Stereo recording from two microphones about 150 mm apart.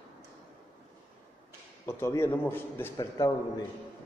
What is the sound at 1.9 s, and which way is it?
A man's voice, 15° left (ahead or behind).